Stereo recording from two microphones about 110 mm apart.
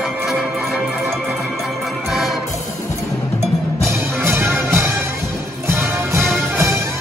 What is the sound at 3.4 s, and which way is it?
Music, 25° right (ahead or behind).